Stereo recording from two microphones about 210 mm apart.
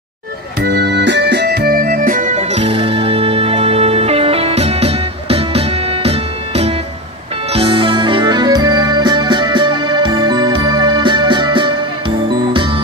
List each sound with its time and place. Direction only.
0.6 s organ: 50° right (ahead or behind); by 6.7 s 30° right (ahead or behind)
7.5 s music: 25° right (ahead or behind)